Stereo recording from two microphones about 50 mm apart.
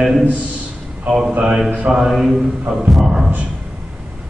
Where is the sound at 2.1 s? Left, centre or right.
Centre.